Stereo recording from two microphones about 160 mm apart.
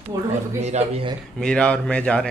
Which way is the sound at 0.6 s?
45° right (ahead or behind).